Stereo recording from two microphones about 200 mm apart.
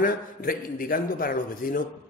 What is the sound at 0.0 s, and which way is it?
A man's voice, 45° left (ahead or behind).